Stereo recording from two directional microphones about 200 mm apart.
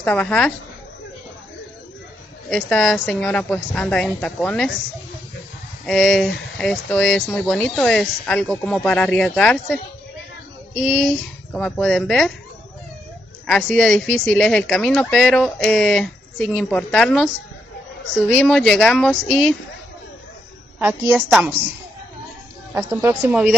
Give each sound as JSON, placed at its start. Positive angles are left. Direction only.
{"t": 0.0, "sound": "speech", "side_deg": 5}
{"t": 2.5, "sound": "speech", "side_deg": 5}
{"t": 5.9, "sound": "speech", "side_deg": 0}
{"t": 10.8, "sound": "speech", "side_deg": 5}
{"t": 13.5, "sound": "speech", "side_deg": 5}
{"t": 18.3, "sound": "speech", "side_deg": 5}
{"t": 20.8, "sound": "a woman's voice", "side_deg": -10}
{"t": 22.8, "sound": "a woman's voice", "side_deg": -10}